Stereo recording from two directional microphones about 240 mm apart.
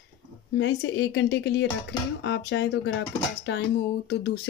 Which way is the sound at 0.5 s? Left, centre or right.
Left.